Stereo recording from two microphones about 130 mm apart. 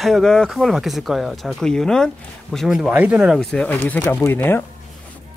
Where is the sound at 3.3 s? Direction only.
10° left (ahead or behind).